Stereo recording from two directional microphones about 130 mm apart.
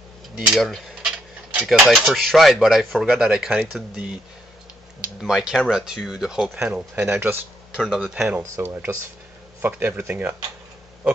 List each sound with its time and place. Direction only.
0.4 s speech: centre (ahead or behind)
5.2 s speech: 5° right (ahead or behind)
7.0 s speech: 15° right (ahead or behind)
8.4 s speech: 20° right (ahead or behind)